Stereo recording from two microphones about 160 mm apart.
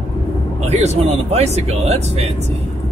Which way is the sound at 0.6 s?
40° right (ahead or behind).